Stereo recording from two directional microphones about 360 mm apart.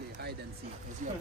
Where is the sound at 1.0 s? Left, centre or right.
Right.